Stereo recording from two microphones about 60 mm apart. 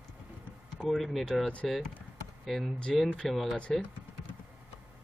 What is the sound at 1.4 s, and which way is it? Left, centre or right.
Speech, centre.